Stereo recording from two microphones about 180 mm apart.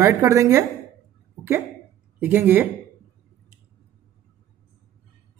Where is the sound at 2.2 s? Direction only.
10° right (ahead or behind).